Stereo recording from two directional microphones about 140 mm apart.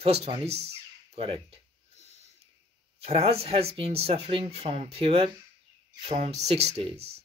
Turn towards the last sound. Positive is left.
turn(degrees=-45)  # may be behind; listen again after turning